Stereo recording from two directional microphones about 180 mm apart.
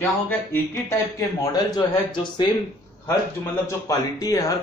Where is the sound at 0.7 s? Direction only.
20° left (ahead or behind).